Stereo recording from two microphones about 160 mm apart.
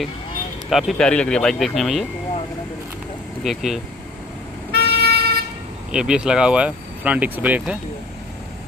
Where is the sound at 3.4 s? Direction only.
Centre (ahead or behind).